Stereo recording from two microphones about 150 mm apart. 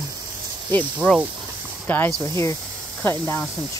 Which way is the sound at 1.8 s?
10° left (ahead or behind).